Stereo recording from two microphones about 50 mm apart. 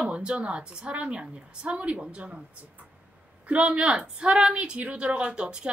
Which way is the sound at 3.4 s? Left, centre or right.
Right.